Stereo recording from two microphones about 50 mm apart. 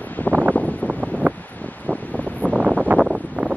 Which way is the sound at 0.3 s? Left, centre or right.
Right.